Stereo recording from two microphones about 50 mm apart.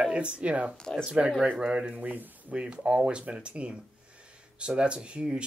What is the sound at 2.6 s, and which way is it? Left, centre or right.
Speech, right.